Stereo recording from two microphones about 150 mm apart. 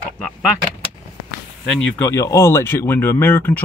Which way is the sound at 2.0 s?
20° left (ahead or behind).